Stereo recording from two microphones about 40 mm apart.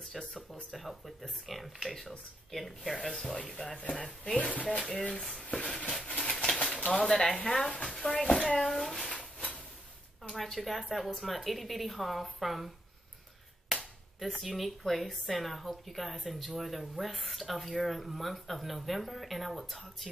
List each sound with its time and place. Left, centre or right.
0.2 s speech: centre
3.9 s speech: left
6.0 s a sound: centre
6.8 s speech: left; by 9.1 s centre
10.2 s speech: centre
14.2 s speech: centre